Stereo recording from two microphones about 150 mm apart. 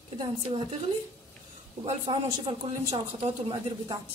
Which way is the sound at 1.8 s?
35° right (ahead or behind).